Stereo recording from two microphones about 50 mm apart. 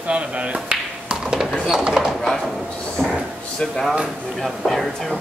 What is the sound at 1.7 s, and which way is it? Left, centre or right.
Speech, centre.